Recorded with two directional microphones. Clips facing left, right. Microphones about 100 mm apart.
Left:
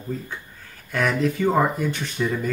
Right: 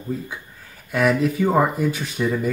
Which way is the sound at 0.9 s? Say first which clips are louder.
Right 3 dB; 5° right (ahead or behind).